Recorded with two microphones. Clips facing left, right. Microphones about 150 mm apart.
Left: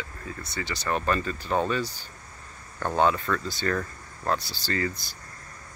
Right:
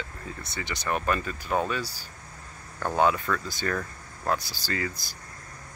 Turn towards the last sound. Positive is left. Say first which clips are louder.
# left 3 dB
turn(degrees=-10)  # may be behind; listen again after turning